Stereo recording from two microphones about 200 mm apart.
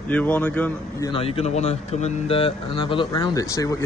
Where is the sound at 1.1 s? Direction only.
30° left (ahead or behind).